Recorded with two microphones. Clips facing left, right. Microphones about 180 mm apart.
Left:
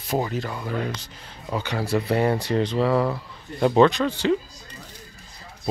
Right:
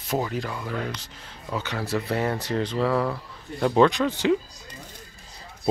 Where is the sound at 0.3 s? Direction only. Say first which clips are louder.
Left 2 dB; 5° left (ahead or behind).